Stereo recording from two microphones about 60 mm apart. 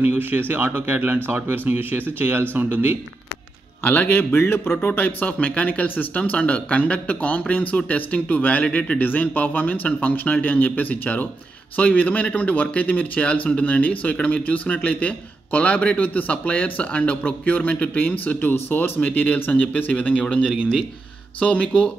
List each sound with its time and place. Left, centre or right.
0.0 s speech: right
3.8 s a man's voice: left
5.2 s speech: left